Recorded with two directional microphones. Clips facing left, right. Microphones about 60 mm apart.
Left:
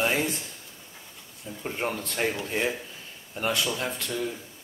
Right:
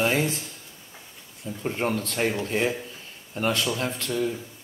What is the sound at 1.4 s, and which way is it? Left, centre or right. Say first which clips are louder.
Speech: right 4 dB; centre.